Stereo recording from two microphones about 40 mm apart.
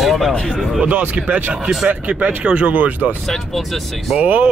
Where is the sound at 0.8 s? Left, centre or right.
Right.